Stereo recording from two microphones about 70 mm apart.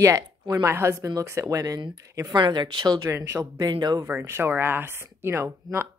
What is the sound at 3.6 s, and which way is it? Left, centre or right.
Speech, right.